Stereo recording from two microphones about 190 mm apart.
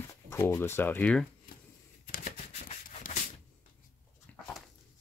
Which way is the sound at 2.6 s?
45° left (ahead or behind).